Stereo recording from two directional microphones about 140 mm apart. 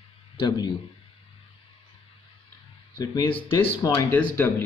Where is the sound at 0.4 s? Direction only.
30° left (ahead or behind).